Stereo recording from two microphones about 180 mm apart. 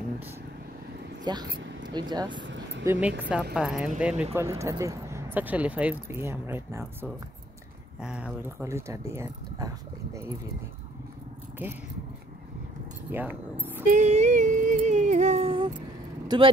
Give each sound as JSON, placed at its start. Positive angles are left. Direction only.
{"t": 1.2, "sound": "speech", "side_deg": -25}
{"t": 2.4, "sound": "vehicle", "side_deg": -85}
{"t": 2.8, "sound": "speech", "side_deg": -10}
{"t": 13.1, "sound": "speech", "side_deg": -10}
{"t": 13.8, "sound": "a sound", "side_deg": -40}